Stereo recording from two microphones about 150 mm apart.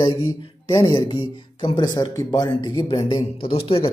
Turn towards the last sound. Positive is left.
turn(degrees=40)  # may be behind; listen again after turning